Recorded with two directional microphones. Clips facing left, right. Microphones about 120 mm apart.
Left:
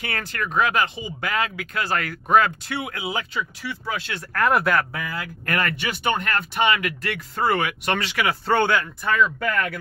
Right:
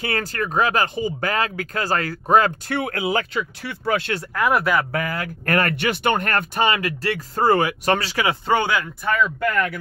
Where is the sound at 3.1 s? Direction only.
65° right (ahead or behind); by 8.2 s 35° right (ahead or behind).